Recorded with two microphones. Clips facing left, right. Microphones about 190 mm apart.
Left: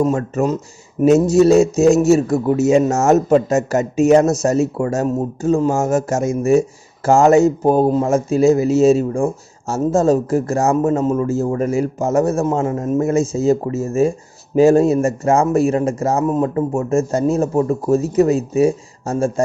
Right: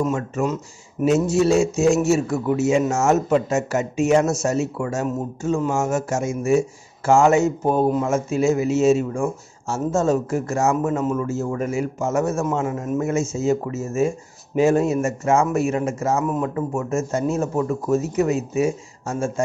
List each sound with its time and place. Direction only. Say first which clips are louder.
0.0 s speech: left 5 dB; 35° left (ahead or behind)